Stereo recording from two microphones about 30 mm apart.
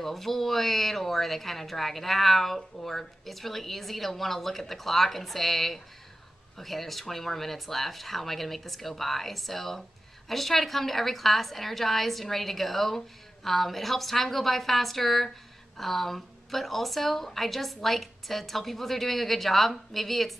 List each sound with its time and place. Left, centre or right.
0.0 s speech: centre